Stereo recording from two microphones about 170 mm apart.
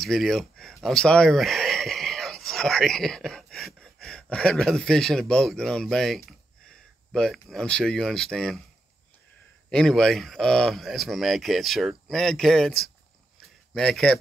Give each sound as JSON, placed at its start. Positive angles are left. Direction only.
{"t": 0.0, "sound": "speech", "side_deg": 0}
{"t": 9.7, "sound": "speech", "side_deg": 5}
{"t": 13.7, "sound": "speech", "side_deg": 5}